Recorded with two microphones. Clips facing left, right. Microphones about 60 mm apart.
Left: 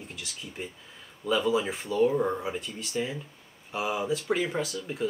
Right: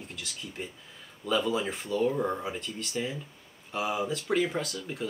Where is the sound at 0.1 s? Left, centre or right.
Centre.